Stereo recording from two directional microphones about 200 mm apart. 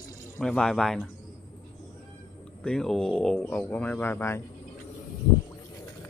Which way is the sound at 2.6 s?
5° left (ahead or behind).